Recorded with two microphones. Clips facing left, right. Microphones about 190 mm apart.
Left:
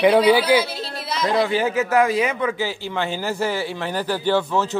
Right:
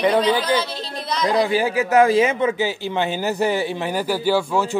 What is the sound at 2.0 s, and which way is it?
A man's voice, 25° right (ahead or behind).